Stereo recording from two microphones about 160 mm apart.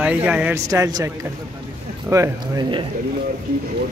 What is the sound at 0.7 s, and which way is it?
Speech, 20° right (ahead or behind).